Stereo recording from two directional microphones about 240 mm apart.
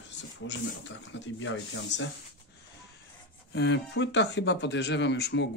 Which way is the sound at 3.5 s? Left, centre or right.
Left.